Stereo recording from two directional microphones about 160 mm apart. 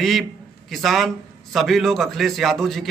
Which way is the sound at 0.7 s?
Centre (ahead or behind).